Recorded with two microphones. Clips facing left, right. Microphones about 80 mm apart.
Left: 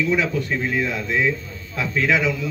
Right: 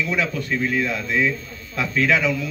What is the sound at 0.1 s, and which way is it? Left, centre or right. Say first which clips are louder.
A man's voice: left 2 dB; left.